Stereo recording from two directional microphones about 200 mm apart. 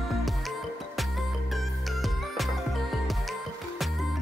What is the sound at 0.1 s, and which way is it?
Music, centre (ahead or behind).